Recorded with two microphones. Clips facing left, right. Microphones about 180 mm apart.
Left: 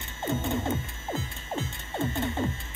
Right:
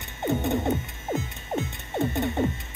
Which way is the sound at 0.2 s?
20° right (ahead or behind).